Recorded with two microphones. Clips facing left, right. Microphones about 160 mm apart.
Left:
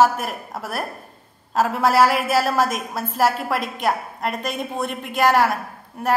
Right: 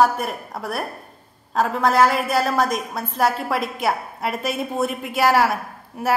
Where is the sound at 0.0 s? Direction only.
Centre (ahead or behind).